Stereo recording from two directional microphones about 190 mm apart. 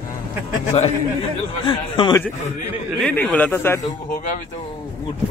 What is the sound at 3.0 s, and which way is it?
Speech, 5° left (ahead or behind).